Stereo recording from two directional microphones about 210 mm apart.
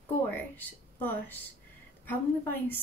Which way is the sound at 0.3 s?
10° left (ahead or behind).